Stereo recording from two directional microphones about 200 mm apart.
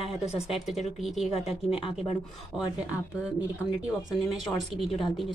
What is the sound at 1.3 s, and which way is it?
Speech, 30° left (ahead or behind).